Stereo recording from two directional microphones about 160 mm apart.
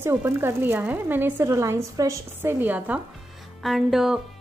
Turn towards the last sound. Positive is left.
turn(degrees=0)  # may be behind; listen again after turning